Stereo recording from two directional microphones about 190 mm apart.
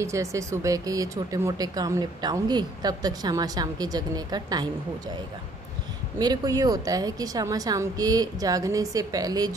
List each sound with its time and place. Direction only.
0.0 s speech: 15° right (ahead or behind)
6.1 s speech: 20° right (ahead or behind)